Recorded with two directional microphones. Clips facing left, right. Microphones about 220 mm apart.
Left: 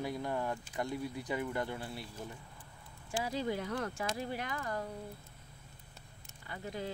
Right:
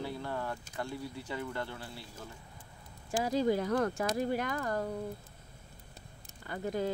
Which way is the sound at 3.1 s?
40° right (ahead or behind).